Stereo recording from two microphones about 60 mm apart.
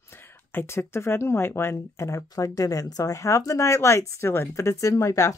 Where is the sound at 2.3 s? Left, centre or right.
Left.